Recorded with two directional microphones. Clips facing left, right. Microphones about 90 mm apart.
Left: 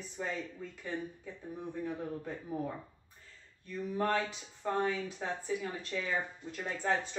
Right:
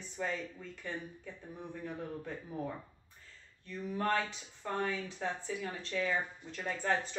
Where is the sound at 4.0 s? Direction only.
15° left (ahead or behind).